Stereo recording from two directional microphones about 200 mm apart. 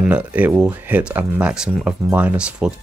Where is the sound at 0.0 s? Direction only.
5° right (ahead or behind).